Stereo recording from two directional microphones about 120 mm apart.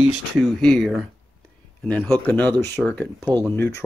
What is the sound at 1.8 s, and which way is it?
Speech, 10° left (ahead or behind).